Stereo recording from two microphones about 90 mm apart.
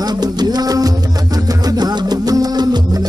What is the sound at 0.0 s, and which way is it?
Music, 50° right (ahead or behind).